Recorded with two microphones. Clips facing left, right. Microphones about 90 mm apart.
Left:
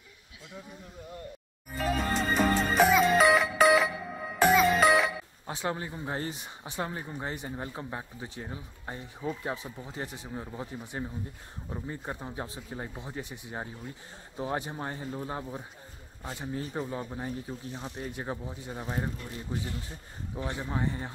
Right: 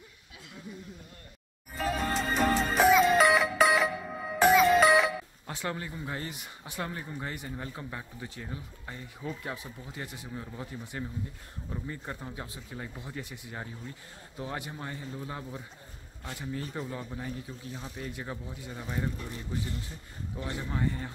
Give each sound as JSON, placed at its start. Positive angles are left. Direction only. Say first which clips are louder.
{"t": 1.8, "sound": "music", "louder": "left 1 dB", "side_deg": 0}
{"t": 5.5, "sound": "speech", "louder": "left 3 dB", "side_deg": 20}
{"t": 5.9, "sound": "speech", "louder": "left 3 dB", "side_deg": 30}
{"t": 12.4, "sound": "speech", "louder": "left 3 dB", "side_deg": 35}
{"t": 17.2, "sound": "speech", "louder": "left 3 dB", "side_deg": 35}